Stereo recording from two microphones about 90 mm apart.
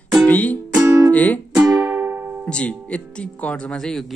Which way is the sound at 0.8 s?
30° right (ahead or behind).